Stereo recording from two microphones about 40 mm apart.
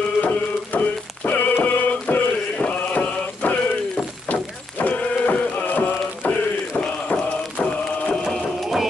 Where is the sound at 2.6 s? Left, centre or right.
Left.